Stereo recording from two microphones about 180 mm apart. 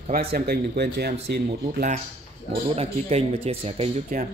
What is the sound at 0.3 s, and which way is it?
Speech, 60° right (ahead or behind).